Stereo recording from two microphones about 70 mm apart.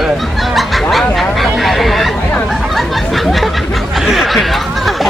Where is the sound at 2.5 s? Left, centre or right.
Centre.